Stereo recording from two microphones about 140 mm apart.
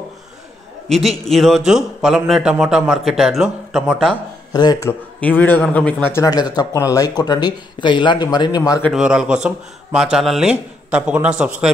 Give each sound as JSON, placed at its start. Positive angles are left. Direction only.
{"t": 0.8, "sound": "speech", "side_deg": 0}
{"t": 4.5, "sound": "speech", "side_deg": 30}
{"t": 5.2, "sound": "a man's voice", "side_deg": 10}
{"t": 6.3, "sound": "speech", "side_deg": 30}
{"t": 8.9, "sound": "a man's voice", "side_deg": -5}